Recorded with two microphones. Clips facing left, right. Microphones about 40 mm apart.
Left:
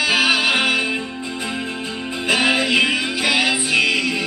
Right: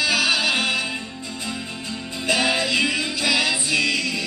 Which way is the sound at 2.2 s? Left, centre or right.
Left.